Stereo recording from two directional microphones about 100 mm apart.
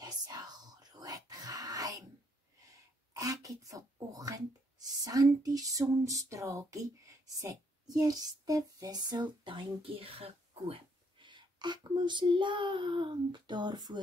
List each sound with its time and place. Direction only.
0.0 s whispering: 40° right (ahead or behind)
3.2 s a sound: 35° right (ahead or behind)
5.0 s speech: 40° right (ahead or behind)